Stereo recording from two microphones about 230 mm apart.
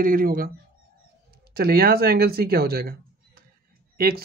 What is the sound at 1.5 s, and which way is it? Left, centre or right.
Speech, right.